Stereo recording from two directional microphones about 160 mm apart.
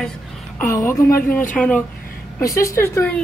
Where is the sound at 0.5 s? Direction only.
15° left (ahead or behind).